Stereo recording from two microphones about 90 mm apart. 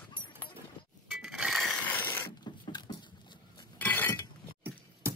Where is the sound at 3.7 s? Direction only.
20° left (ahead or behind).